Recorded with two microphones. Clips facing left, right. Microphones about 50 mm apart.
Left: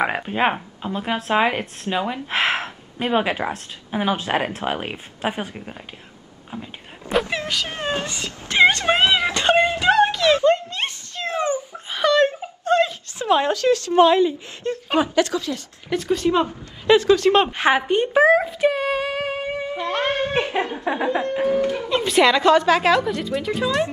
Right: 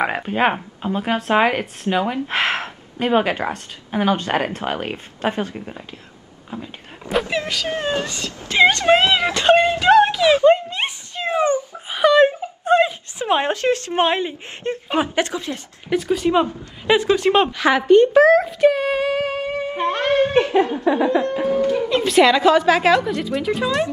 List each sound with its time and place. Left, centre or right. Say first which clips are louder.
0.0 s speech: right 2 dB; centre
6.6 s a sound: right 2 dB; centre
7.6 s music: right 3 dB; left
8.0 s speech: right 2 dB; centre
8.3 s music: right 1 dB; left
8.6 s speech: right 3 dB; centre
9.2 s a sound: right 3 dB; centre
12.6 s a woman's voice: right 3 dB; centre
15.9 s speech: right 2 dB; centre
17.5 s a woman's voice: right 1 dB; left
17.7 s speech: right 10 dB; centre
19.7 s music: right 5 dB; right
20.3 s music: right 6 dB; left
21.8 s speech: right 2 dB; centre